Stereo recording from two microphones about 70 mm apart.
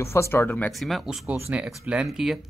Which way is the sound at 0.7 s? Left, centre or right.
Centre.